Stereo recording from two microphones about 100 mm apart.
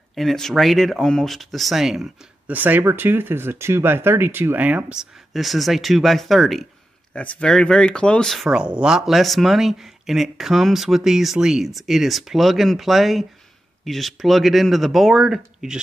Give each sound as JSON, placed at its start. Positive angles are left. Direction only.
{"t": 0.1, "sound": "speech", "side_deg": 0}
{"t": 2.4, "sound": "speech", "side_deg": -15}
{"t": 5.3, "sound": "speech", "side_deg": 0}
{"t": 7.2, "sound": "speech", "side_deg": 10}
{"t": 8.5, "sound": "speech", "side_deg": -10}